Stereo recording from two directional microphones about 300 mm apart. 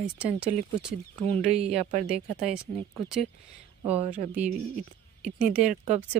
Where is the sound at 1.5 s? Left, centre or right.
Centre.